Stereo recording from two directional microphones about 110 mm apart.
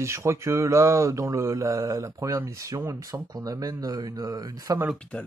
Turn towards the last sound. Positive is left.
turn(degrees=10)  # may be behind; listen again after turning